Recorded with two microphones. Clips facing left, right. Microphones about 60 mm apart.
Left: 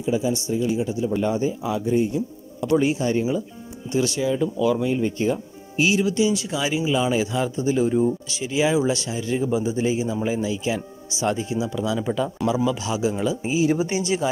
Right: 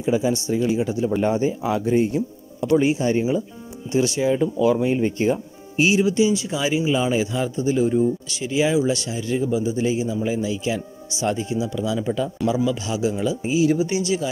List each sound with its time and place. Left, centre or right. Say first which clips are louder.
0.0 s speech: right 2 dB; right
2.8 s speech: right 2 dB; centre
6.0 s speech: right 2 dB; centre
11.5 s speech: right 1 dB; centre
11.8 s speech: even; centre
12.1 s speech: even; centre
13.7 s speech: right 1 dB; left